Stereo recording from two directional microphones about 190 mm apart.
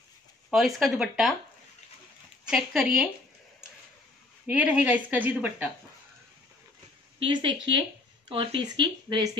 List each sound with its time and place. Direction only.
0.5 s speech: centre (ahead or behind)
2.4 s speech: 5° right (ahead or behind)
4.5 s speech: 5° right (ahead or behind)
7.2 s speech: 25° right (ahead or behind)